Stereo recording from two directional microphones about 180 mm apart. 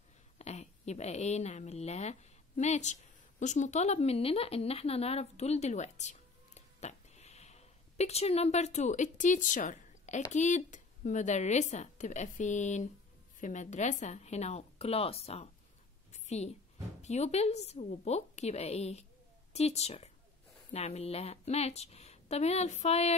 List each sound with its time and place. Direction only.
0.4 s a woman's voice: 40° left (ahead or behind)
16.1 s a sound: 40° left (ahead or behind)
17.0 s a woman's voice: 35° left (ahead or behind)